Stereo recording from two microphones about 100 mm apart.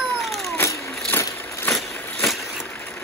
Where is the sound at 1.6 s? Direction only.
Centre (ahead or behind).